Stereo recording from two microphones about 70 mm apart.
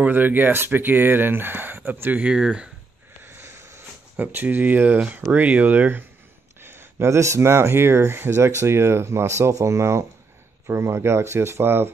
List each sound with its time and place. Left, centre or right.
0.0 s speech: right
2.3 s speech: centre
3.2 s sniff: right
4.2 s speech: right